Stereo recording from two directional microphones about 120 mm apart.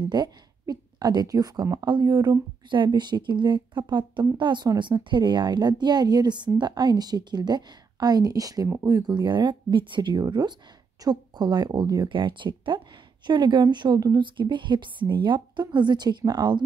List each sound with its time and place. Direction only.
0.0 s speech: 35° right (ahead or behind)